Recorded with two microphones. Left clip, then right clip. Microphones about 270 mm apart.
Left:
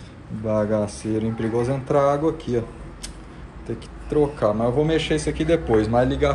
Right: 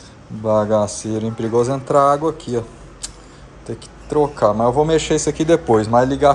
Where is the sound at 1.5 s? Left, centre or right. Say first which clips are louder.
Right 7 dB; centre.